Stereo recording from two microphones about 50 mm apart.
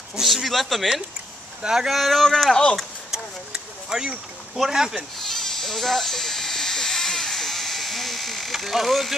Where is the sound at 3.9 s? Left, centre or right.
Centre.